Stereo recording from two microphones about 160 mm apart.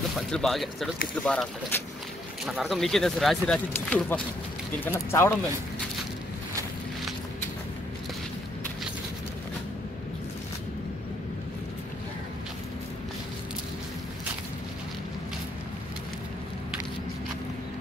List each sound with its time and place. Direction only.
0.3 s speech: centre (ahead or behind)